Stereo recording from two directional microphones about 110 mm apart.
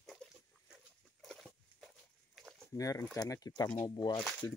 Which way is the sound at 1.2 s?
5° left (ahead or behind).